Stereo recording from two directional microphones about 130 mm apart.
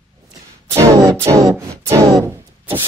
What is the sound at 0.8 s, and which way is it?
Speech, 25° right (ahead or behind).